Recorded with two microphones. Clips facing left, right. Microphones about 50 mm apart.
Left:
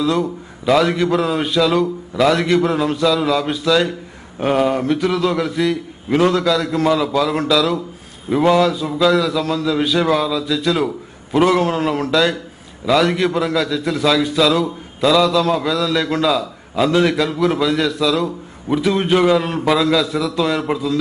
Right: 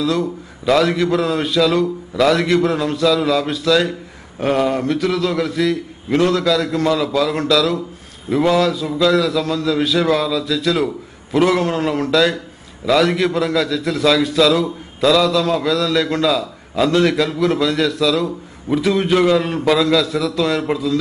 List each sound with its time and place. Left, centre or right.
0.0 s a man's voice: centre